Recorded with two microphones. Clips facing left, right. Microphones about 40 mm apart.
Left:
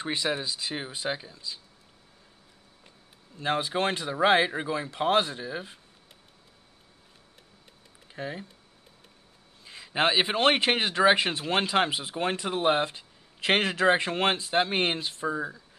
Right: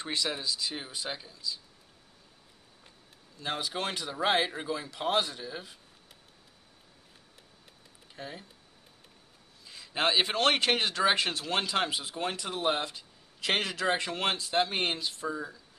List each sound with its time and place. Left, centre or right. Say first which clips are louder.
0.0 s a man's voice: left 4 dB; left
3.3 s speech: left 6 dB; left
4.0 s a man's voice: left 5 dB; centre
8.1 s speech: left 7 dB; left
9.7 s a man's voice: left 3 dB; left
15.2 s a man's voice: left 6 dB; left